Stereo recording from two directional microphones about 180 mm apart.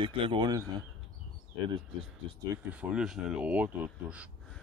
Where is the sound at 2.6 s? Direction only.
5° right (ahead or behind).